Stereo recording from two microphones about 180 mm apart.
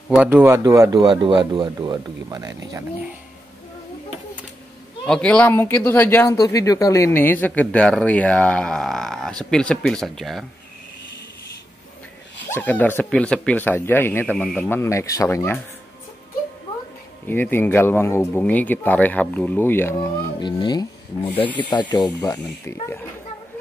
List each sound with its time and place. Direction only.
0.1 s speech: 10° right (ahead or behind)
5.0 s speech: 5° left (ahead or behind)
12.4 s speech: 10° left (ahead or behind)
17.3 s speech: 10° left (ahead or behind)